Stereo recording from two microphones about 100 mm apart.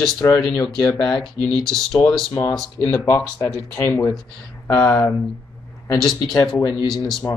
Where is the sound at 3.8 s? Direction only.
25° left (ahead or behind).